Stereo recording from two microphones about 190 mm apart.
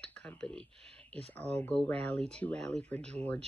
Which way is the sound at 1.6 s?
5° left (ahead or behind).